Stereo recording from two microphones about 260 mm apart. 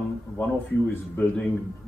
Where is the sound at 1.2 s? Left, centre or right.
Centre.